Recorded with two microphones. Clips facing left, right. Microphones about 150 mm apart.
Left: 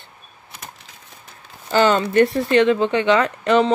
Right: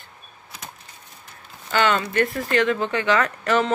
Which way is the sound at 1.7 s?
30° left (ahead or behind).